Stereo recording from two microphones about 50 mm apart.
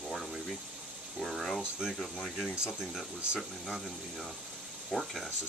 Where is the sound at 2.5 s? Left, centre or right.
Centre.